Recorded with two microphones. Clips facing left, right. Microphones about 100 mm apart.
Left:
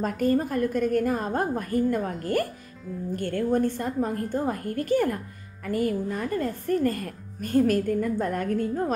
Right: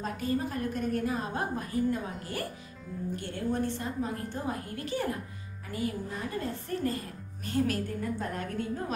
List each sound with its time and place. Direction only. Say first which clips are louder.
0.0 s speech: left 7 dB; 50° left (ahead or behind)